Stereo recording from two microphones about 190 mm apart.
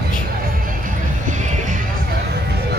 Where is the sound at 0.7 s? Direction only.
45° right (ahead or behind).